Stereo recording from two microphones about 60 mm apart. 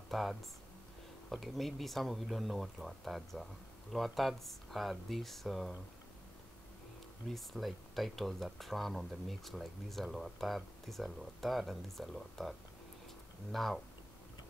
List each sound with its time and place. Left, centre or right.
0.1 s speech: centre
7.2 s speech: centre